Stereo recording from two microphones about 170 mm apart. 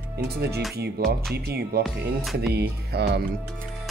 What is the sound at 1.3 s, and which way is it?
Speech, 75° right (ahead or behind).